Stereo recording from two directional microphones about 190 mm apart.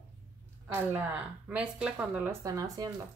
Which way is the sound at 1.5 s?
5° right (ahead or behind).